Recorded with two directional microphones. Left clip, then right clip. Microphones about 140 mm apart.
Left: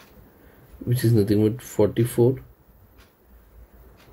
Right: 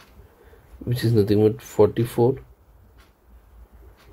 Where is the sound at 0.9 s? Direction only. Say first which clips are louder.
Right 1 dB; 25° right (ahead or behind).